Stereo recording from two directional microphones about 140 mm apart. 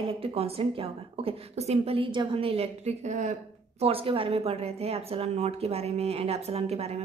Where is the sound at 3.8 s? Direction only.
40° right (ahead or behind).